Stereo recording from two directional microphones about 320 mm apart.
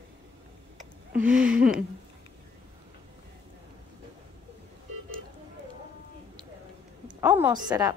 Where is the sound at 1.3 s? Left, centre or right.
Centre.